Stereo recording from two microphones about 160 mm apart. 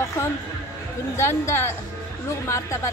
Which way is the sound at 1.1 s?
15° left (ahead or behind).